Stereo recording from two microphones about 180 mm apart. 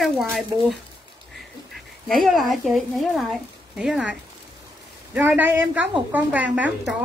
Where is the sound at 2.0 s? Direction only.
Centre (ahead or behind).